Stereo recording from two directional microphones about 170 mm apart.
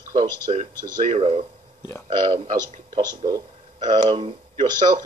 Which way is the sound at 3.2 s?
30° right (ahead or behind).